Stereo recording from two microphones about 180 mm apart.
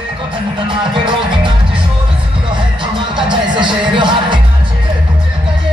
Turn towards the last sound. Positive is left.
turn(degrees=-25)  # may be behind; listen again after turning